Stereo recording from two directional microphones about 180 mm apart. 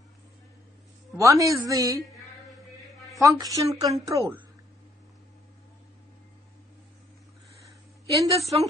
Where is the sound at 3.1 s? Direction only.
20° right (ahead or behind).